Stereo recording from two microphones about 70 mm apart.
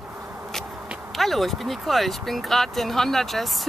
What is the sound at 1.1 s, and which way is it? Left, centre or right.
Speech, centre.